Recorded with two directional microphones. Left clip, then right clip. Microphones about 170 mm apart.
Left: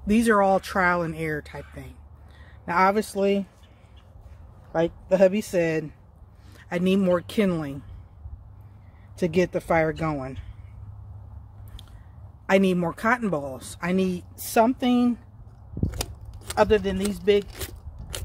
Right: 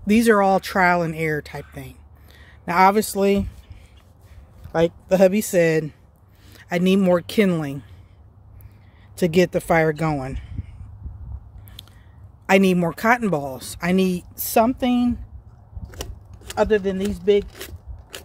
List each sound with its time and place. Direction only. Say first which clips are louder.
0.0 s speech: right 4 dB; 50° right (ahead or behind); by 3.4 s 70° right (ahead or behind)
4.7 s speech: right 3 dB; 70° right (ahead or behind)
6.5 s speech: right 4 dB; 55° right (ahead or behind)
9.1 s speech: right 5 dB; 65° right (ahead or behind)
12.4 s speech: right 4 dB; 60° right (ahead or behind); by 15.1 s 40° right (ahead or behind)
15.9 s scissors: left 2 dB; centre (ahead or behind)
16.5 s speech: right 1 dB; 30° right (ahead or behind)
17.5 s zipper: even; centre (ahead or behind)